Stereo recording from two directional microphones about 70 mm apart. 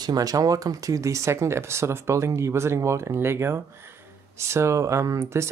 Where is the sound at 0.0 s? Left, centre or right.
Right.